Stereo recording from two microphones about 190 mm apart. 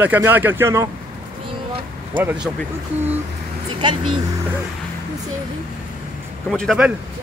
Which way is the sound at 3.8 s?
25° right (ahead or behind).